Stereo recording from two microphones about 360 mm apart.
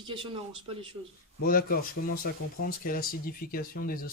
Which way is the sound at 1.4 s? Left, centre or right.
Left.